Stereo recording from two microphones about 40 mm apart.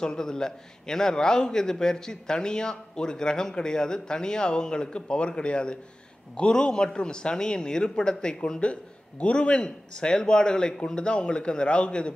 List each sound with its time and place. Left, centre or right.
0.0 s a man's voice: centre